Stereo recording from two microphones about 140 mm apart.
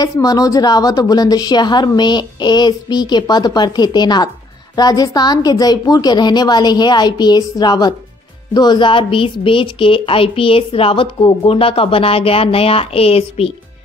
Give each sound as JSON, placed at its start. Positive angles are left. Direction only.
{"t": 0.0, "sound": "a woman's voice", "side_deg": 25}